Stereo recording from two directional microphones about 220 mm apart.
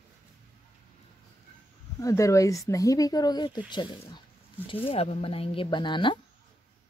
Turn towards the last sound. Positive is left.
turn(degrees=20)  # may be behind; listen again after turning